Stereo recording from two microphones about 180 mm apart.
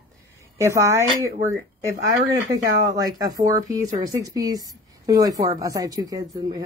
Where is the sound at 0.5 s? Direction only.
15° right (ahead or behind).